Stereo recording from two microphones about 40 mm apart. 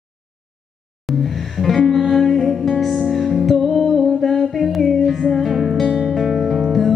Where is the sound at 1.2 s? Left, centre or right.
Centre.